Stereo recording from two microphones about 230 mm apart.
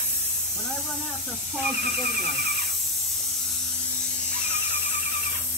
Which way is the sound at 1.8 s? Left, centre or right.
Right.